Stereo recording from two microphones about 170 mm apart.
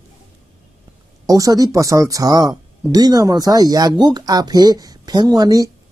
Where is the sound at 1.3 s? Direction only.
20° right (ahead or behind).